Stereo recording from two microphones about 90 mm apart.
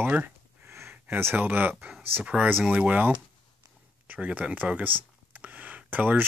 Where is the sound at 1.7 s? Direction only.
5° right (ahead or behind).